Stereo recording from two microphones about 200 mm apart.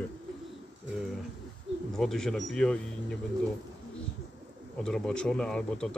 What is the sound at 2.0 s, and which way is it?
Speech, centre (ahead or behind).